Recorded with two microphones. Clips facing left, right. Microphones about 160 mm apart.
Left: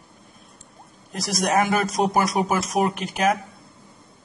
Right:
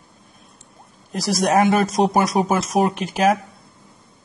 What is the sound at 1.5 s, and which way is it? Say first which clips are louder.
Speech: right 4 dB; 25° right (ahead or behind).